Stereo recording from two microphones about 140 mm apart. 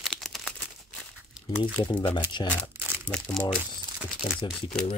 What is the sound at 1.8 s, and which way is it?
Speech, 30° left (ahead or behind).